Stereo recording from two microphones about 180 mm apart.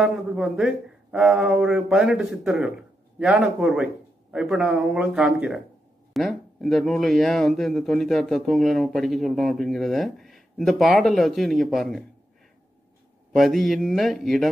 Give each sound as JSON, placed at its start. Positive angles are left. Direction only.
{"t": 0.0, "sound": "speech", "side_deg": -5}
{"t": 13.4, "sound": "speech", "side_deg": 0}